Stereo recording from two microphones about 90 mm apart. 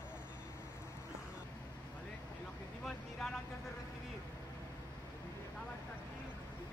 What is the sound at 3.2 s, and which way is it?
Vehicle, centre (ahead or behind).